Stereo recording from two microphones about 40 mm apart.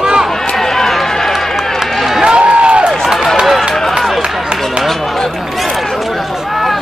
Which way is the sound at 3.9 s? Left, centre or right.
Centre.